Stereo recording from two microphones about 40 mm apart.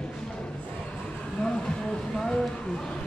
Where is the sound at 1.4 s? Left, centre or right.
Centre.